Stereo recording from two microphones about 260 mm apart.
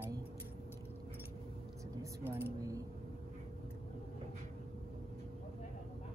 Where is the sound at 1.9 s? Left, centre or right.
Centre.